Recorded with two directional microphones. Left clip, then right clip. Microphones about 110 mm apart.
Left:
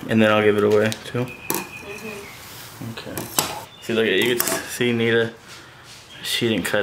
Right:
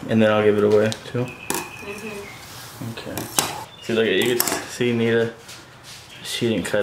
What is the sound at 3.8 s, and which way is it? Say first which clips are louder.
Speech: even; 10° left (ahead or behind).